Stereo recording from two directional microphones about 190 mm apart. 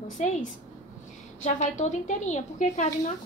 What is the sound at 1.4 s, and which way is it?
A woman's voice, 40° left (ahead or behind).